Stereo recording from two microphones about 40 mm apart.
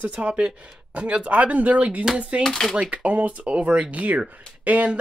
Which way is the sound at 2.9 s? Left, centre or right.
Right.